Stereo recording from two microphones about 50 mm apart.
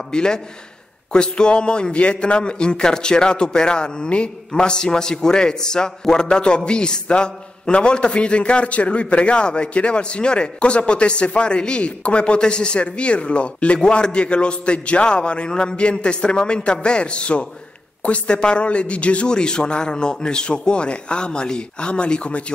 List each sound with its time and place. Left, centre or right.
0.1 s a man's voice: centre